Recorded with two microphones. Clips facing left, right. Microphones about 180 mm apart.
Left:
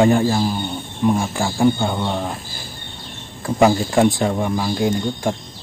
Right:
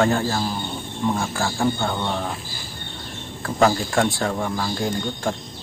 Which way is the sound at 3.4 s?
15° left (ahead or behind).